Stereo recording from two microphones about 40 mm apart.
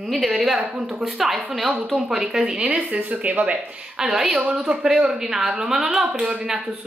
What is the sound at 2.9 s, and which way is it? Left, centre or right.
Speech, right.